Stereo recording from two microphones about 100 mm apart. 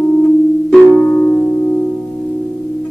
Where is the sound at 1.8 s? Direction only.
15° left (ahead or behind).